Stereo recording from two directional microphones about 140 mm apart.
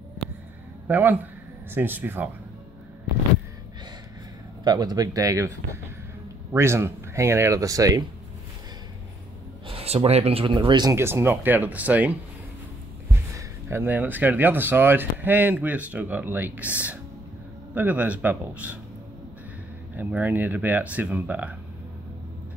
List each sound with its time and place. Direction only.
0.8 s speech: 15° right (ahead or behind)
4.6 s speech: 30° right (ahead or behind)
6.5 s speech: 20° right (ahead or behind)
9.7 s speech: 45° right (ahead or behind)
11.0 s speech: 15° right (ahead or behind)
13.7 s speech: 15° right (ahead or behind)
20.0 s speech: 10° right (ahead or behind)